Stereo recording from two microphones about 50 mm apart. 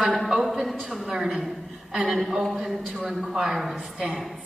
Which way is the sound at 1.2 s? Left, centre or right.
Centre.